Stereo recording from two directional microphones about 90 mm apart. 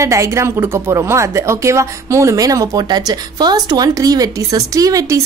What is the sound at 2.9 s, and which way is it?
A woman's voice, 55° right (ahead or behind).